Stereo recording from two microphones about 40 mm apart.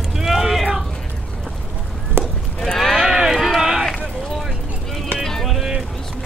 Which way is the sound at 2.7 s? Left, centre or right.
Centre.